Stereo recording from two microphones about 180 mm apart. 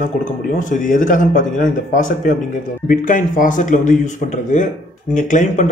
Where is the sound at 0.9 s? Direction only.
45° left (ahead or behind).